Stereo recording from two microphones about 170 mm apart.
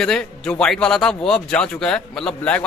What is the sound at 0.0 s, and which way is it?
A man's voice, 5° left (ahead or behind).